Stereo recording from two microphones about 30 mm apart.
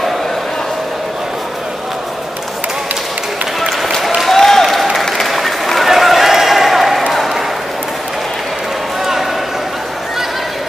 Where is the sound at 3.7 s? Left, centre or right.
Centre.